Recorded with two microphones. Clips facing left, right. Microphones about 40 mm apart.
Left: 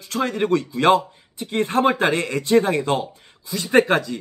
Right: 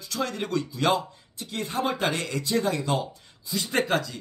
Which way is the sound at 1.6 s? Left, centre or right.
Left.